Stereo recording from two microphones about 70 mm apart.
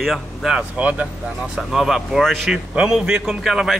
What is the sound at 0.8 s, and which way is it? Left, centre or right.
Speech, right.